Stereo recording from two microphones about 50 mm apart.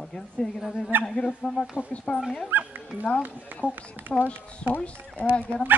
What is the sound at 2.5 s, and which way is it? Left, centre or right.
Dog, right.